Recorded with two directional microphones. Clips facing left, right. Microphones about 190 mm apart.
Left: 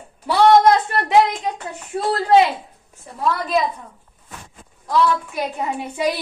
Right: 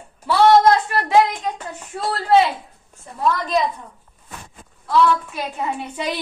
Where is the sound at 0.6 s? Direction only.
20° left (ahead or behind).